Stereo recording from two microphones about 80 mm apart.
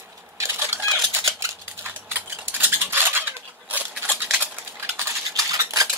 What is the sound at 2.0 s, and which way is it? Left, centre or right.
Cutlery, right.